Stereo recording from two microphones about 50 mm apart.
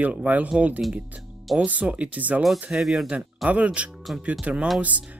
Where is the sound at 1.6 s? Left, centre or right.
Right.